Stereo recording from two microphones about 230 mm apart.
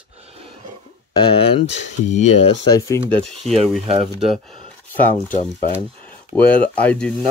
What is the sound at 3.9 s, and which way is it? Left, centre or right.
Speech, right.